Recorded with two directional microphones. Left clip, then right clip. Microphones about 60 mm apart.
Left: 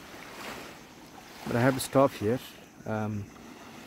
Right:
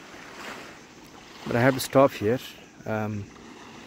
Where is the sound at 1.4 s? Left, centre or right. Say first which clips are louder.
Right 4 dB; centre.